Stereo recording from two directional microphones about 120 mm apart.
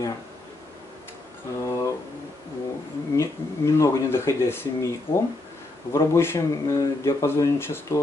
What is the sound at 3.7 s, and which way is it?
Speech, 25° left (ahead or behind).